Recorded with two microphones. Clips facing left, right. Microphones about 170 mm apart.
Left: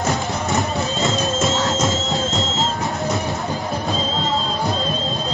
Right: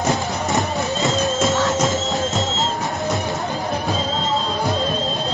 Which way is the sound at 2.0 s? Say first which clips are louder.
Right 1 dB; 20° right (ahead or behind).